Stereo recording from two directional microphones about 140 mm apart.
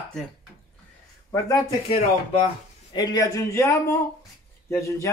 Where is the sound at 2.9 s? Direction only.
30° left (ahead or behind).